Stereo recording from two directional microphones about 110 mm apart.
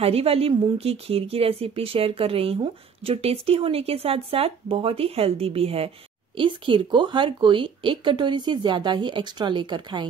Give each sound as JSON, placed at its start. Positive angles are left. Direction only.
{"t": 0.0, "sound": "a woman's voice", "side_deg": -60}
{"t": 6.3, "sound": "speech", "side_deg": -50}